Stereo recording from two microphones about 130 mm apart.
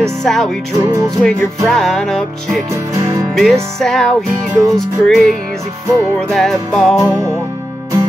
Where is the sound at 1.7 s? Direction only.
5° left (ahead or behind).